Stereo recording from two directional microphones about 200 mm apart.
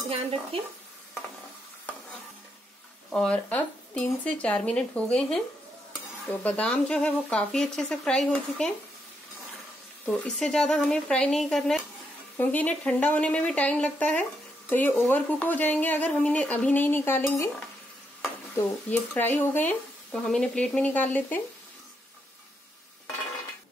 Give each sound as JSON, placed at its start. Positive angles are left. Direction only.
{"t": 0.1, "sound": "stir", "side_deg": -30}
{"t": 3.1, "sound": "speech", "side_deg": 5}
{"t": 10.0, "sound": "speech", "side_deg": 5}
{"t": 18.9, "sound": "speech", "side_deg": 10}